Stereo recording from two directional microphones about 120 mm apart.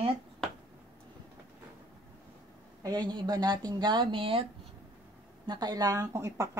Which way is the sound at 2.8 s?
35° right (ahead or behind).